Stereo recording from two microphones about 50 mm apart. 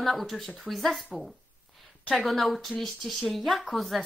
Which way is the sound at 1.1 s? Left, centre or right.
Centre.